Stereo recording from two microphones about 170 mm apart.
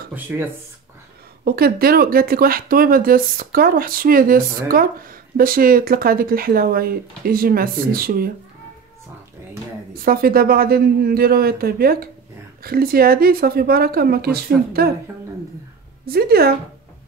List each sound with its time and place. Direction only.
0.1 s speech: 10° right (ahead or behind)
1.4 s speech: 60° right (ahead or behind)
9.9 s speech: 60° right (ahead or behind)
16.1 s speech: 65° right (ahead or behind)